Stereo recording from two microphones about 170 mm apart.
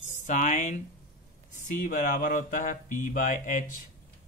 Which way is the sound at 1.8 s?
50° left (ahead or behind).